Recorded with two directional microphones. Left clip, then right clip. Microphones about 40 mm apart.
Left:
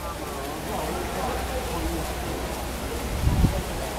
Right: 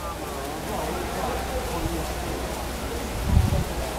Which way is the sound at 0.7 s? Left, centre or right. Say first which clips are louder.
Even; centre.